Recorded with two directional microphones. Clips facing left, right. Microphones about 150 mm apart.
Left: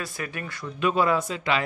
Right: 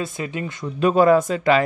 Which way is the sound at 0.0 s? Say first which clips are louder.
Right 6 dB; 20° right (ahead or behind).